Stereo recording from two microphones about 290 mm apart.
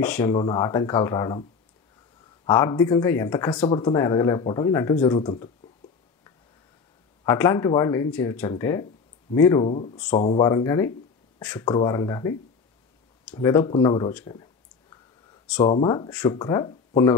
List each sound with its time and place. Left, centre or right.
0.0 s speech: centre
2.4 s speech: centre
7.2 s speech: centre